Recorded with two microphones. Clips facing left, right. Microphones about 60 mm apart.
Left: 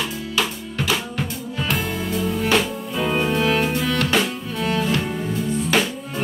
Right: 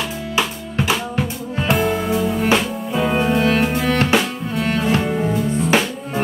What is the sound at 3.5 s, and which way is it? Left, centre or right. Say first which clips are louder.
Music: right 3 dB; centre.